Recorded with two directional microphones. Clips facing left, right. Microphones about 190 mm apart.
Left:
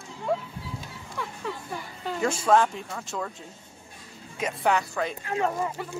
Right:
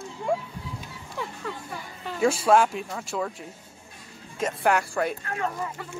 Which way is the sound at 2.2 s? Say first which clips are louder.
Right 2 dB; 10° right (ahead or behind).